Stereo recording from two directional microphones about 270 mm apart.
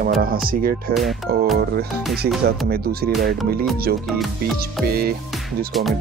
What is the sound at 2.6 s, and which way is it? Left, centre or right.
Speech, right.